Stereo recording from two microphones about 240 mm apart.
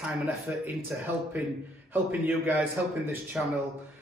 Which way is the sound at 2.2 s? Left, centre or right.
Centre.